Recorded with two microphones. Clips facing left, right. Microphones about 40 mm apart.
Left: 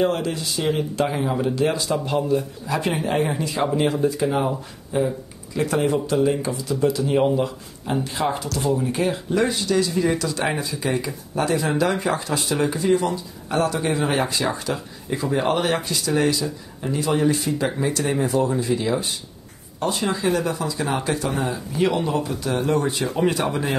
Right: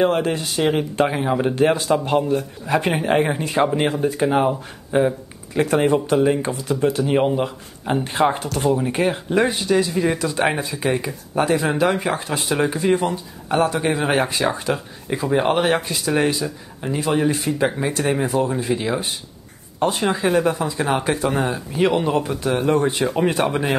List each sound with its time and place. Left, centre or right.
0.0 s speech: right
1.4 s speech: right